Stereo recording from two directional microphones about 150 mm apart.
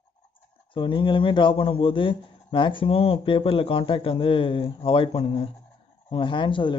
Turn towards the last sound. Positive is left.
turn(degrees=35)  # may be behind; listen again after turning